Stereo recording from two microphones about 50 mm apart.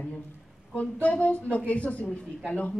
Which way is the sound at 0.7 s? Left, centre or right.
Left.